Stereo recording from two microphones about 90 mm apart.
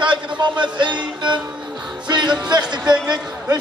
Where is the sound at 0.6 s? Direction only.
55° right (ahead or behind).